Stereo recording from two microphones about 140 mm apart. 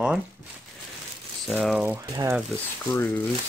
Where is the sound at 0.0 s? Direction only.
5° right (ahead or behind).